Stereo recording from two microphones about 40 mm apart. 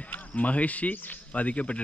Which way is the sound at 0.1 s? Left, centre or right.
Left.